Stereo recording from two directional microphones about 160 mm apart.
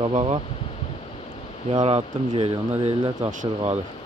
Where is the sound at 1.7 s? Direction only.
35° right (ahead or behind).